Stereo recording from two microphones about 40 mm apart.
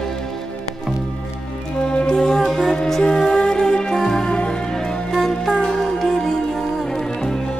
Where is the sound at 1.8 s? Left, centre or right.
Left.